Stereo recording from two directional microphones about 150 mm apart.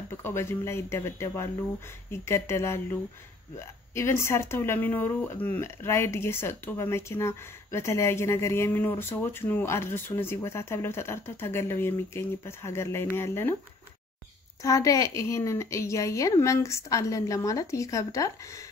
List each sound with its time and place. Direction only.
0.2 s speech: 15° left (ahead or behind)
14.6 s a woman's voice: 20° left (ahead or behind)